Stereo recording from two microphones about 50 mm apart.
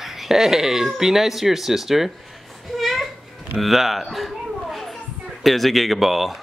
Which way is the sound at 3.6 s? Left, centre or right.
Centre.